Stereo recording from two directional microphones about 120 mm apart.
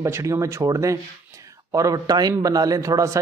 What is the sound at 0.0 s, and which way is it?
Speech, 25° right (ahead or behind).